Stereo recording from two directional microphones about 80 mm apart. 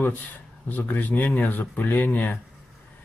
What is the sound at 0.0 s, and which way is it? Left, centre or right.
Speech, left.